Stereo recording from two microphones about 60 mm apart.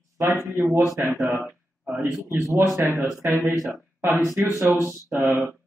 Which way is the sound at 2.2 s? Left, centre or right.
Right.